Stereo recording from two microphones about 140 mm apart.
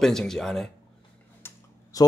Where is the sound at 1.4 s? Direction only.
25° left (ahead or behind).